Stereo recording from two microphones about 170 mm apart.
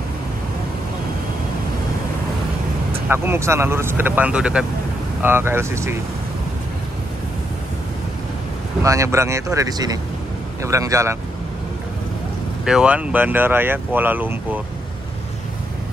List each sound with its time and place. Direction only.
3.1 s speech: 15° right (ahead or behind)
8.8 s speech: 20° right (ahead or behind)
12.6 s speech: 5° right (ahead or behind)